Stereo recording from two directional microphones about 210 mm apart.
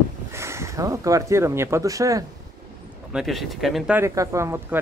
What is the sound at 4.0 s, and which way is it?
Speech, 15° right (ahead or behind).